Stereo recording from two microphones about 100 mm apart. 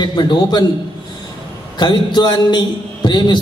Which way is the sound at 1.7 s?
45° left (ahead or behind).